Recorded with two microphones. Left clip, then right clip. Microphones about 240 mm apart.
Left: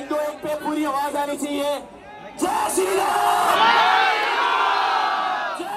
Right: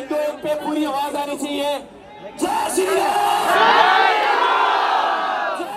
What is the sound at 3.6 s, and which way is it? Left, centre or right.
Crowd, right.